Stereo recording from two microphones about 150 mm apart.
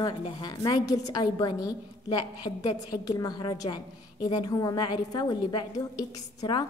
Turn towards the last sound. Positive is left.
turn(degrees=25)  # may be behind; listen again after turning